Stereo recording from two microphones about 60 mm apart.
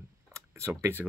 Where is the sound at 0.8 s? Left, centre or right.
Right.